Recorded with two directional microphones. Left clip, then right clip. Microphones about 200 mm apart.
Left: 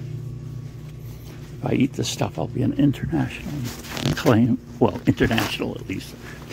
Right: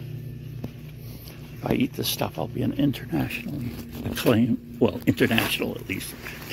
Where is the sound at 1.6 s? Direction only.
30° left (ahead or behind).